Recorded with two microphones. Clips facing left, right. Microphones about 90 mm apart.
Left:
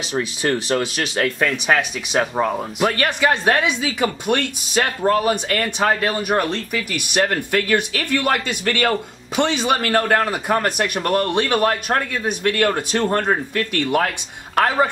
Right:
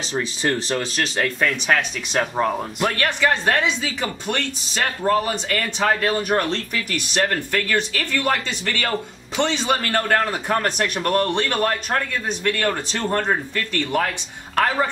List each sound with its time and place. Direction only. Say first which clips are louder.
0.1 s a woman's voice: left 2 dB; 10° left (ahead or behind)